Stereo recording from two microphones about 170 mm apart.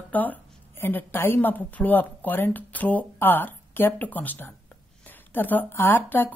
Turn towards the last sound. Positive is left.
turn(degrees=10)  # may be behind; listen again after turning